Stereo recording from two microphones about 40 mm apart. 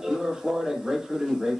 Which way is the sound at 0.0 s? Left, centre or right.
Centre.